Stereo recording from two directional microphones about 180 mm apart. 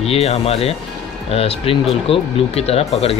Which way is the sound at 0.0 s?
35° left (ahead or behind).